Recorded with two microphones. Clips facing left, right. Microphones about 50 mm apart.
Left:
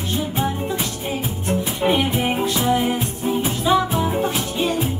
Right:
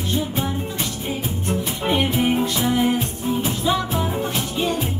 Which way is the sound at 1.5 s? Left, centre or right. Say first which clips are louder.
Left 3 dB; centre.